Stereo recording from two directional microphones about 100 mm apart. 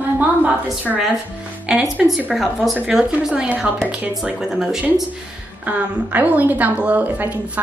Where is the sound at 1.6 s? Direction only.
10° right (ahead or behind).